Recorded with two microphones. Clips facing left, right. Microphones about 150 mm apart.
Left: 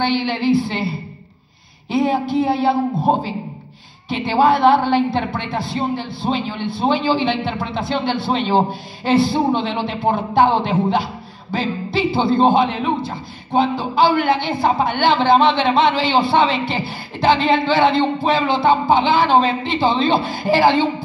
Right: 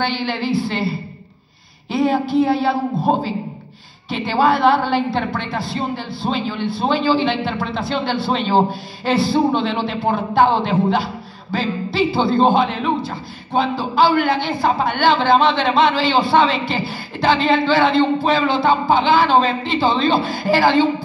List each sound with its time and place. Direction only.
0.0 s a man's voice: 20° left (ahead or behind)
1.9 s a man's voice: 20° left (ahead or behind)
4.1 s a man's voice: 20° left (ahead or behind)